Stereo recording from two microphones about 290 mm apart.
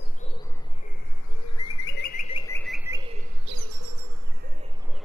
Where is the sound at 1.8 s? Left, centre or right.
Left.